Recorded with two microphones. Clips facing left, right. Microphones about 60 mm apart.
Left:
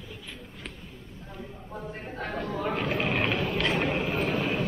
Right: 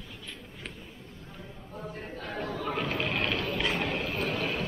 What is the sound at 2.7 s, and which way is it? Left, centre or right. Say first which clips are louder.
Vehicle: left 3 dB; centre.